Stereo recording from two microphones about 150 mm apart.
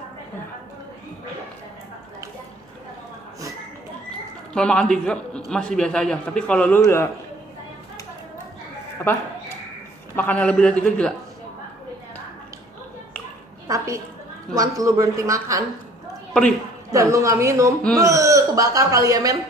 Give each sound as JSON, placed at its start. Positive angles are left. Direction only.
{"t": 4.6, "sound": "a man's voice", "side_deg": 5}
{"t": 9.1, "sound": "a man's voice", "side_deg": 10}
{"t": 13.7, "sound": "a woman's voice", "side_deg": -20}
{"t": 16.9, "sound": "a man's voice", "side_deg": -20}